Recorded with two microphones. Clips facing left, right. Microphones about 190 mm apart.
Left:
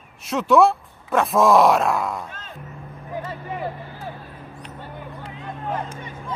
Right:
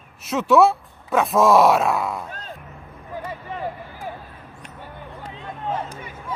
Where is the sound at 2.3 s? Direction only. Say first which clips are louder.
Right 3 dB; 35° right (ahead or behind).